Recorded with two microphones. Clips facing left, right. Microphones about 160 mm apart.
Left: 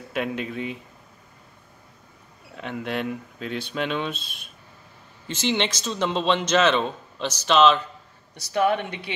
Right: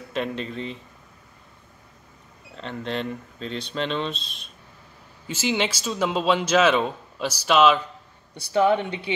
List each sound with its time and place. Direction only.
0.1 s speech: 10° left (ahead or behind)
2.5 s speech: 10° left (ahead or behind)
5.2 s a man's voice: 5° right (ahead or behind)
8.5 s speech: 20° right (ahead or behind)